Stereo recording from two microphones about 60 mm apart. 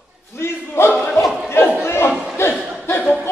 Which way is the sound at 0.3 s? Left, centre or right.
Left.